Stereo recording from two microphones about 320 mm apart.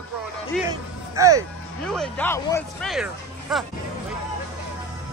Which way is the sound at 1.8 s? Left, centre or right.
Centre.